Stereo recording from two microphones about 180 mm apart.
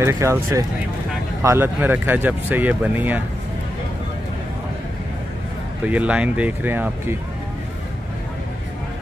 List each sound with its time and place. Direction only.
0.0 s speech: 15° right (ahead or behind)
5.9 s speech: 5° right (ahead or behind)